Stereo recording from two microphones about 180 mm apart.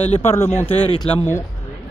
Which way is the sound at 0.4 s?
10° left (ahead or behind).